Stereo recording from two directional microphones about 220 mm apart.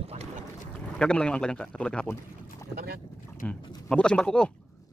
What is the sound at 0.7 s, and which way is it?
A man's voice, 5° left (ahead or behind).